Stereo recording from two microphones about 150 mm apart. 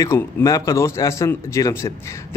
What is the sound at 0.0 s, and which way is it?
A man's voice, 20° left (ahead or behind).